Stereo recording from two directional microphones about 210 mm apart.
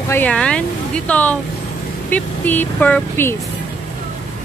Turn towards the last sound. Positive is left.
turn(degrees=10)  # may be behind; listen again after turning